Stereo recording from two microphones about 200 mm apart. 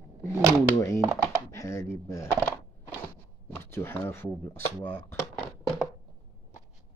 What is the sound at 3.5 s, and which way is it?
Speech, 10° left (ahead or behind).